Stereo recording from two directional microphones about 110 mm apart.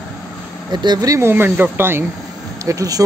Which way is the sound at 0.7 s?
40° right (ahead or behind).